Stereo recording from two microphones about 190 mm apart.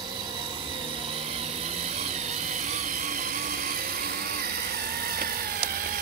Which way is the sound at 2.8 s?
45° right (ahead or behind).